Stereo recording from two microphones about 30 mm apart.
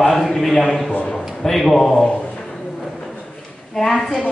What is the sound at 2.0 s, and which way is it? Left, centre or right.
Speech, left.